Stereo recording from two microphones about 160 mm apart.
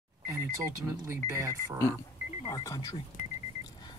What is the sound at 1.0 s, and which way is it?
Speech, 15° right (ahead or behind).